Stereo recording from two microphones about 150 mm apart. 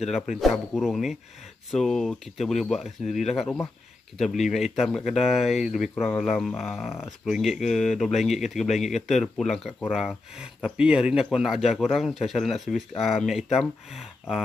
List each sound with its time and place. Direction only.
0.1 s speech: centre (ahead or behind)